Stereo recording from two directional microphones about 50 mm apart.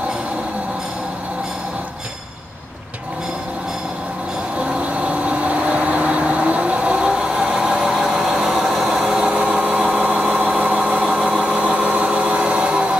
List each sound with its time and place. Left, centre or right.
4.6 s vehicle: right; by 9.3 s centre
9.3 s a sound: centre
10.0 s vehicle: centre